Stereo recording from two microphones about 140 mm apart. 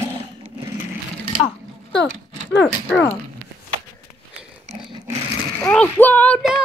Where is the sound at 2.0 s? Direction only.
10° left (ahead or behind).